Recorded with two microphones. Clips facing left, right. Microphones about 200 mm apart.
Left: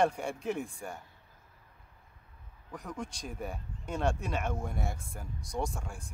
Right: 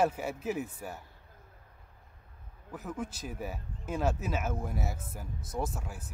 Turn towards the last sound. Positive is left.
turn(degrees=-5)  # may be behind; listen again after turning